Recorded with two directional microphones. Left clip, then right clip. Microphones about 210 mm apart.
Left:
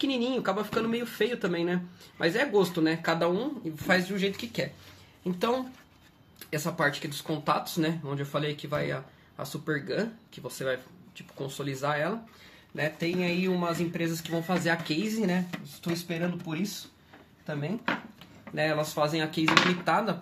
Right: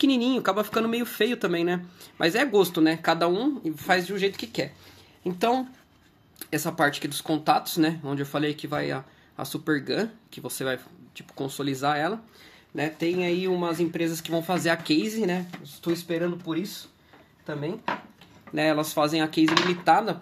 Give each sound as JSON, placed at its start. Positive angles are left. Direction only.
{"t": 0.0, "sound": "speech", "side_deg": -55}
{"t": 18.5, "sound": "speech", "side_deg": -50}